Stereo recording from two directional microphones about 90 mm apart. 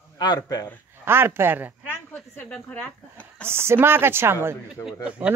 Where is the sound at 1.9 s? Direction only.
20° left (ahead or behind).